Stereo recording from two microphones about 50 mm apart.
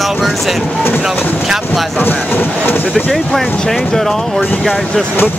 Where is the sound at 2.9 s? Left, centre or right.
Centre.